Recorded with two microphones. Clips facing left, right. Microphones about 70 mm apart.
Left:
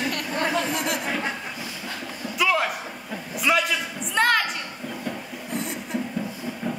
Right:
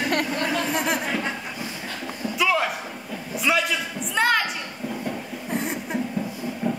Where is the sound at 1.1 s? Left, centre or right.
Centre.